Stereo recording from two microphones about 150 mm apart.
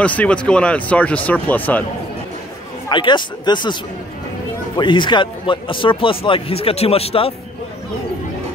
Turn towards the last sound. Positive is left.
turn(degrees=40)  # may be behind; listen again after turning